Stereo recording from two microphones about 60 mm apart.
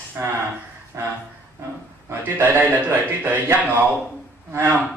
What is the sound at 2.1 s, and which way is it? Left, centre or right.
A man's voice, right.